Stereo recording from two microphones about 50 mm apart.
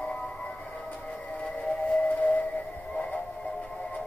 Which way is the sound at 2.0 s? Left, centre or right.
Left.